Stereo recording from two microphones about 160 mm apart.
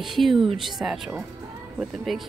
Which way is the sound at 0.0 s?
Centre (ahead or behind).